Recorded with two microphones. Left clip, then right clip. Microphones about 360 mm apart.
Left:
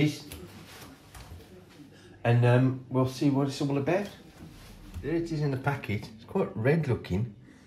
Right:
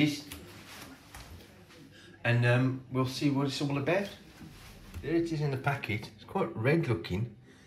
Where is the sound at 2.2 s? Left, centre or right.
Centre.